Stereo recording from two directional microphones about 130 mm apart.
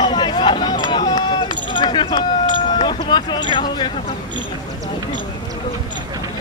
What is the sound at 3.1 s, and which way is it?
Speech, 35° left (ahead or behind).